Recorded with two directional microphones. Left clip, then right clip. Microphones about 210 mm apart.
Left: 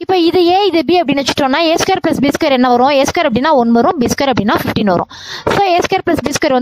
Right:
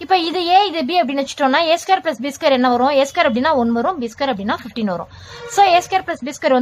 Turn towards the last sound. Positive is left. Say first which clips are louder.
# left 4 dB
turn(degrees=45)  # may be behind; listen again after turning